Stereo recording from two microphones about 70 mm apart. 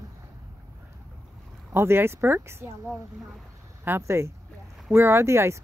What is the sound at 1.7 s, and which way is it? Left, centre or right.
Speech, right.